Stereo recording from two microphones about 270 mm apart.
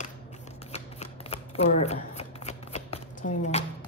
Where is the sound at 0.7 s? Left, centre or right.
Left.